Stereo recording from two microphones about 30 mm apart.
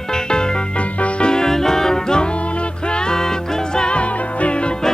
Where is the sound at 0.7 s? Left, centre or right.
Left.